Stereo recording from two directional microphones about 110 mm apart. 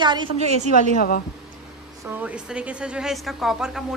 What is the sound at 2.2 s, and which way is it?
Speech, 10° right (ahead or behind).